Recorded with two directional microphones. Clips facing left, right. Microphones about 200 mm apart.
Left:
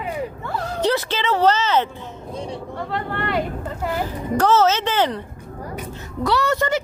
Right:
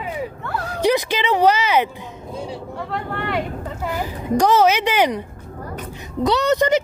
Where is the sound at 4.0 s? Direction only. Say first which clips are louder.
Right 3 dB; 15° right (ahead or behind).